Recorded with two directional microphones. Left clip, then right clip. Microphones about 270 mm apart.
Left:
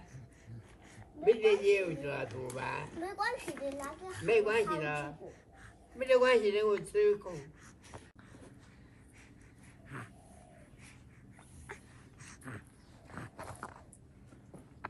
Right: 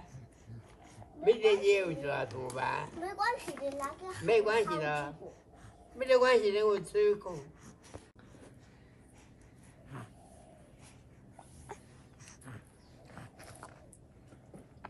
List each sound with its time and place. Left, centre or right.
1.4 s a child's voice: centre
7.2 s speech: right
9.9 s dog: centre
11.3 s dog: centre